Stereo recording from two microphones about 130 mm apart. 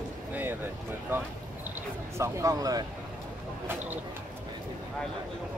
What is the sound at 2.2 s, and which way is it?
Speech, 25° right (ahead or behind).